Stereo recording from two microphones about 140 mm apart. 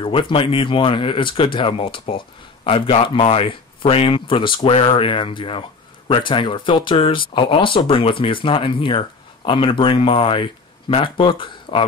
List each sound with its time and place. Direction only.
0.0 s speech: 40° left (ahead or behind)